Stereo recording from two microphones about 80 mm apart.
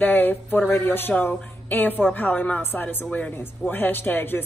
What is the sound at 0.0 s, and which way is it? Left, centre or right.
Speech, left.